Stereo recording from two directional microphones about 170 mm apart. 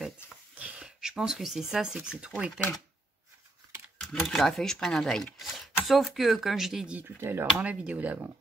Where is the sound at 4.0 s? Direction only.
5° left (ahead or behind).